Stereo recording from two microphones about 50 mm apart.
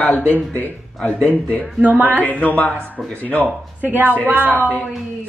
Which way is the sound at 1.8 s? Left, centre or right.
Right.